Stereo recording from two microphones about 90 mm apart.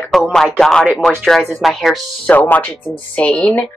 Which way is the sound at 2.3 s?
20° left (ahead or behind).